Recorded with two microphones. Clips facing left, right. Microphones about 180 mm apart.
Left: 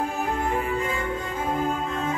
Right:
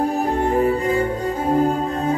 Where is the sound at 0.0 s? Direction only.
35° right (ahead or behind).